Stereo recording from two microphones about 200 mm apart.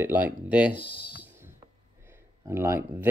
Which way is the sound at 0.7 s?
25° left (ahead or behind).